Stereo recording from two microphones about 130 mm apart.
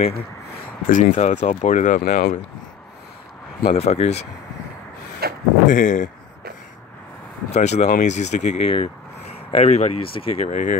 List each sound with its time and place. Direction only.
0.8 s speech: 70° left (ahead or behind)
3.6 s speech: 55° left (ahead or behind)
5.7 s speech: 80° left
7.5 s speech: 60° left (ahead or behind)
8.7 s speech: 50° left (ahead or behind)
10.5 s speech: 70° left (ahead or behind)